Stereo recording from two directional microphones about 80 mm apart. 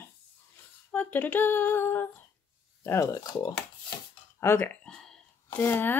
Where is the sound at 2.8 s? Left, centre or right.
Left.